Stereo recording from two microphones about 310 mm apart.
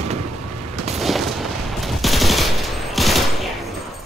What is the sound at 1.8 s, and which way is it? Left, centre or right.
Machine gun, centre.